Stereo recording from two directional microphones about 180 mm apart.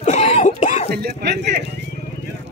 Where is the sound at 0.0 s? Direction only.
40° left (ahead or behind).